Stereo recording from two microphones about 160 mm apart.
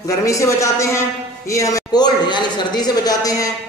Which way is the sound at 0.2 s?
20° left (ahead or behind).